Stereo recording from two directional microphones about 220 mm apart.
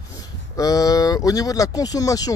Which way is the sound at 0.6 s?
15° left (ahead or behind).